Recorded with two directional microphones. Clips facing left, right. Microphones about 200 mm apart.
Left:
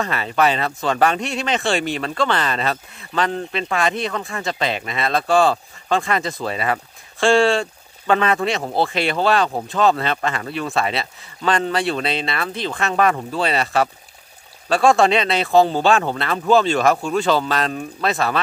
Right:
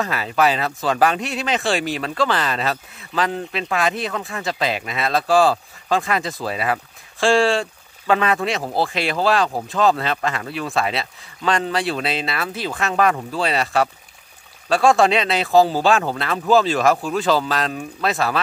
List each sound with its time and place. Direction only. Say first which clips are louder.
0.0 s speech: even; centre (ahead or behind)